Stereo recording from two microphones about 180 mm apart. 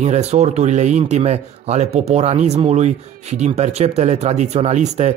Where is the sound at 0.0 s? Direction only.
40° right (ahead or behind).